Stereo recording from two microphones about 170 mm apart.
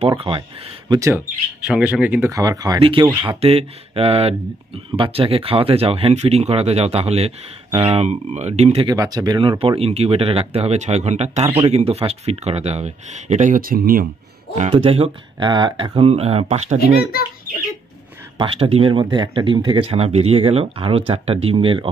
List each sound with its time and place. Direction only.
0.8 s speech: 20° right (ahead or behind)
1.6 s speech: 5° right (ahead or behind); by 8.8 s 40° right (ahead or behind)
8.8 s speech: 20° right (ahead or behind); by 14.0 s 55° right (ahead or behind)
14.7 s speech: 35° right (ahead or behind)
16.8 s a child's voice: 65° left (ahead or behind)
18.4 s speech: 35° right (ahead or behind)